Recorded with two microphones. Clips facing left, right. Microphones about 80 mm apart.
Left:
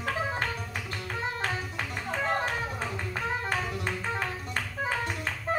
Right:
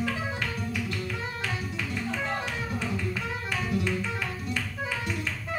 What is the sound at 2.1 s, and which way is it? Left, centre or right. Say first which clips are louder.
Music: left 6 dB; left.